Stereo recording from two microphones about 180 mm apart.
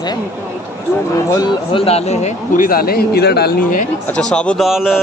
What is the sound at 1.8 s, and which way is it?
Speech, 35° left (ahead or behind).